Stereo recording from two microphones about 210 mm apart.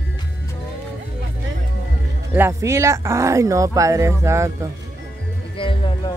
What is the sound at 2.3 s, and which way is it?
Speech, 10° right (ahead or behind).